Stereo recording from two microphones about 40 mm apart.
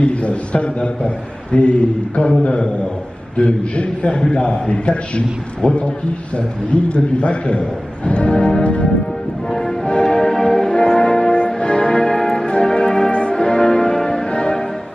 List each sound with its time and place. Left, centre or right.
0.0 s a man's voice: left
9.5 s music: centre
12.4 s music: left
13.1 s change ringing: left